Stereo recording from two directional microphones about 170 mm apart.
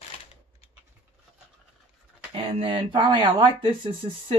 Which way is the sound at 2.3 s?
30° right (ahead or behind).